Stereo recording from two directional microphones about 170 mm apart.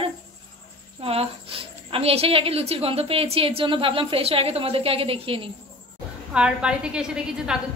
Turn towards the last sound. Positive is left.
turn(degrees=-5)  # may be behind; listen again after turning